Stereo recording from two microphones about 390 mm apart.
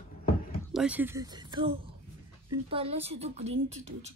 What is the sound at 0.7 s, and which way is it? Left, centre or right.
A woman's voice, centre.